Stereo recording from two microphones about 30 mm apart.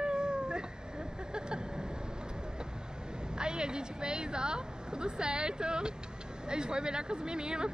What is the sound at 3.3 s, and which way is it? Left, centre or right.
Speech, right.